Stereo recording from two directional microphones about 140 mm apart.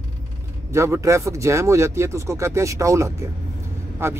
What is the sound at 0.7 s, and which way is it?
Speech, 20° right (ahead or behind).